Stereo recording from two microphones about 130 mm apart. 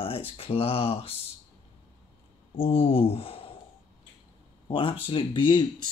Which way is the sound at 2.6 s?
45° left (ahead or behind).